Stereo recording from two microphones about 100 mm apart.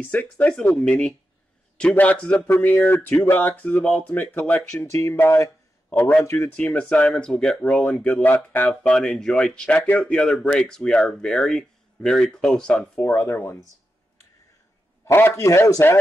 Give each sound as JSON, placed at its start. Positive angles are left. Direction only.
{"t": 0.0, "sound": "speech", "side_deg": 15}
{"t": 4.7, "sound": "a man's voice", "side_deg": 30}
{"t": 5.9, "sound": "a man's voice", "side_deg": 15}
{"t": 6.2, "sound": "a man's voice", "side_deg": 30}
{"t": 6.5, "sound": "speech", "side_deg": 10}
{"t": 13.0, "sound": "a man's voice", "side_deg": 25}
{"t": 15.0, "sound": "a man's voice", "side_deg": 25}